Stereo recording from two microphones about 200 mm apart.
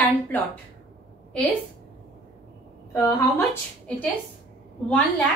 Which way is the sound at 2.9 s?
10° left (ahead or behind).